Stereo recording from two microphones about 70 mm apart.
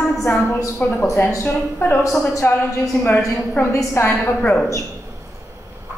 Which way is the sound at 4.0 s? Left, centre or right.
Left.